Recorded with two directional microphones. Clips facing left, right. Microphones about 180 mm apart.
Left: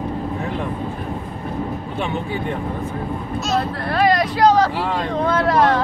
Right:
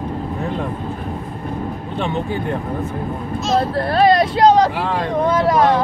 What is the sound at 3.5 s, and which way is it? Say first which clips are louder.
Speech: right 5 dB; 30° right (ahead or behind).